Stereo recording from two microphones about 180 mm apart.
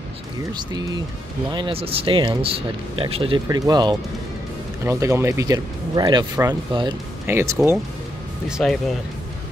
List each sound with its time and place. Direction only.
0.5 s speech: 25° right (ahead or behind)
3.4 s speech: 20° right (ahead or behind)
7.2 s speech: 15° right (ahead or behind)
8.5 s speech: centre (ahead or behind)